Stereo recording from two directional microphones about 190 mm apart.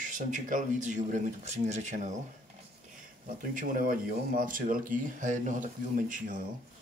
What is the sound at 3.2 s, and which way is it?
Speech, 45° right (ahead or behind).